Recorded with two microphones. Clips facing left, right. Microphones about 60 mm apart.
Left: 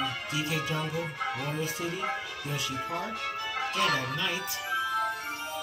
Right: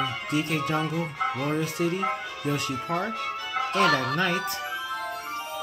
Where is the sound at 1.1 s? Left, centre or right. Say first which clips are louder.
Right 5 dB; right.